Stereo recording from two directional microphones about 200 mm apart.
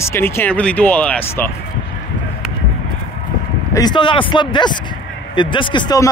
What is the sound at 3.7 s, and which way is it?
Speech, 20° left (ahead or behind).